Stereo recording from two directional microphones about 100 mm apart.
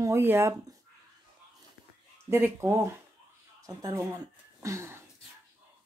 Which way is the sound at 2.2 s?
20° right (ahead or behind).